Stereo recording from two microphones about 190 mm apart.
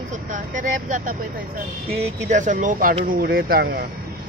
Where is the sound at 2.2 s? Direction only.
40° right (ahead or behind).